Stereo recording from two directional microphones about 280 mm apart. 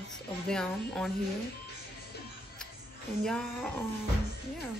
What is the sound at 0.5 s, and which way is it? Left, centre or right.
Speech, centre.